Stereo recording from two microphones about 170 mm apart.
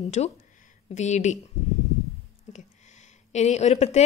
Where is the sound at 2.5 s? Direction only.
45° left (ahead or behind).